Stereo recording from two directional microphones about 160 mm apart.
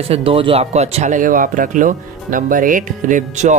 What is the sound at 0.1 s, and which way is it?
Speech, 35° right (ahead or behind).